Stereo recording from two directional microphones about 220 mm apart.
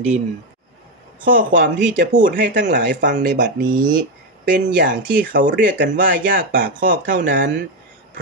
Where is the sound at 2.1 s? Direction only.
35° right (ahead or behind).